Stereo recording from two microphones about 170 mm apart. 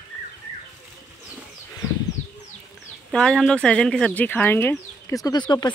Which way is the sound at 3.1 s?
Centre (ahead or behind).